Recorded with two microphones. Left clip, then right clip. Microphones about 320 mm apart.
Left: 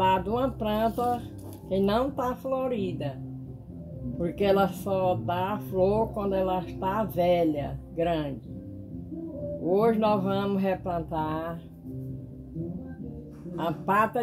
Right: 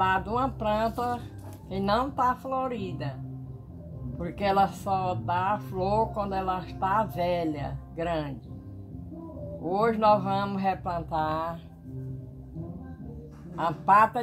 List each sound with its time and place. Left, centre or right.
0.0 s speech: centre
4.2 s speech: centre
9.7 s speech: centre
13.6 s speech: centre